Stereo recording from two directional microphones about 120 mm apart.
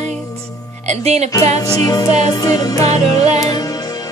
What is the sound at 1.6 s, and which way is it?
Music, 30° left (ahead or behind).